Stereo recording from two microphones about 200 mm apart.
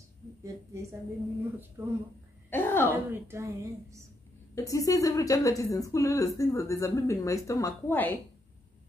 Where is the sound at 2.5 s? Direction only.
10° left (ahead or behind).